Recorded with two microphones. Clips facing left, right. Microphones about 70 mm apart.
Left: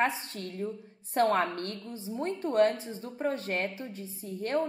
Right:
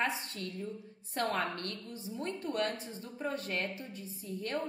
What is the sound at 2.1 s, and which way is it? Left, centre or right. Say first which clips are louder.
A woman's voice: left 7 dB; left.